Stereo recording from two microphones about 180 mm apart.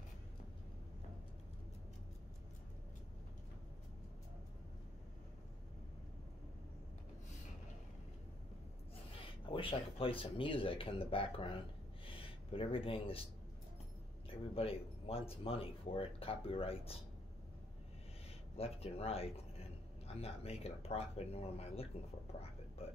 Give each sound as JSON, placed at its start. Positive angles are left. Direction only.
{"t": 9.5, "sound": "speech", "side_deg": 30}
{"t": 14.3, "sound": "speech", "side_deg": 30}
{"t": 18.6, "sound": "speech", "side_deg": 35}